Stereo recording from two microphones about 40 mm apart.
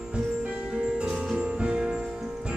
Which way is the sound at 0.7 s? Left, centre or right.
Right.